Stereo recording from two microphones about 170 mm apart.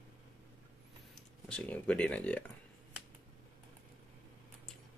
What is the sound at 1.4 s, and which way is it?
Speech, 5° left (ahead or behind).